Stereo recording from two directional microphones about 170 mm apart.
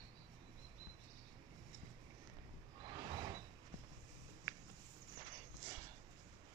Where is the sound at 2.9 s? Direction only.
25° right (ahead or behind).